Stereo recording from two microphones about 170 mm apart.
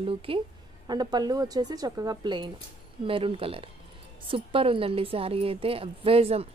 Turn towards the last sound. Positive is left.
turn(degrees=-35)  # may be behind; listen again after turning